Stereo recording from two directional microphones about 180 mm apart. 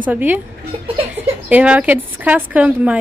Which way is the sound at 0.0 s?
10° right (ahead or behind).